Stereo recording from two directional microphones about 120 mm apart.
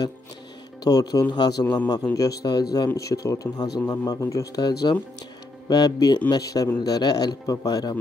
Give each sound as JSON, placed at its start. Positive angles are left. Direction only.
{"t": 0.8, "sound": "speech", "side_deg": 30}